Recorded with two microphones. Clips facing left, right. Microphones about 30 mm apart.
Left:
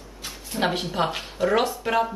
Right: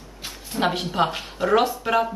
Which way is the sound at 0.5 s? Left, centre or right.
Centre.